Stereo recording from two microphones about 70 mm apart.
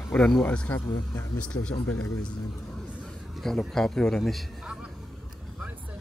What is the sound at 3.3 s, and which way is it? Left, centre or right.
A man's voice, centre.